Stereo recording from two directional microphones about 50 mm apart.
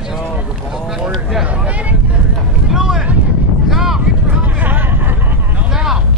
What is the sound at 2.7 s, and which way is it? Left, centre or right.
Vehicle, centre.